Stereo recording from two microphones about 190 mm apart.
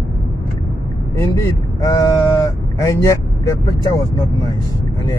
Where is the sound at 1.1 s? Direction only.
15° left (ahead or behind).